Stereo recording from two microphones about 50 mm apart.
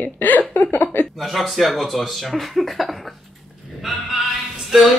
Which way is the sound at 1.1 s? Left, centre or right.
Centre.